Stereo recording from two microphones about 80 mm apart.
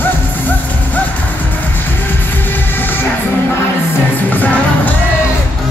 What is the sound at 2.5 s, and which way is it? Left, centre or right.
Train, left.